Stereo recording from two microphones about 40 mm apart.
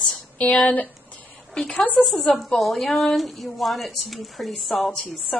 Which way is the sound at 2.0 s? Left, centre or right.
Centre.